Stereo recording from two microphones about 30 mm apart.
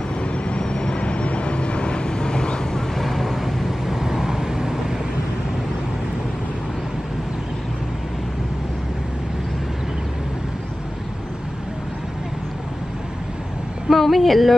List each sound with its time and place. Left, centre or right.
0.2 s vehicle: left
2.9 s vehicle: centre
13.8 s speech: centre